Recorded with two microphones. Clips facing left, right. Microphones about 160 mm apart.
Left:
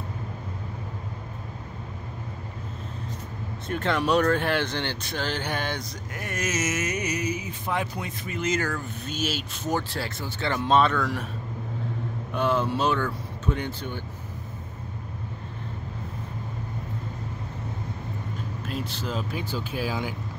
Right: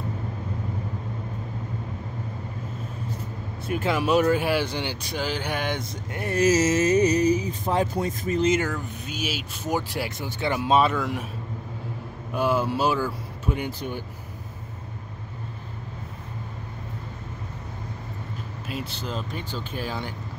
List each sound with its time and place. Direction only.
3.6 s speech: 5° right (ahead or behind)
5.8 s speech: 30° right (ahead or behind)
8.5 s speech: 20° right (ahead or behind)
9.2 s speech: 5° right (ahead or behind)
12.3 s speech: 5° right (ahead or behind)
18.7 s speech: centre (ahead or behind)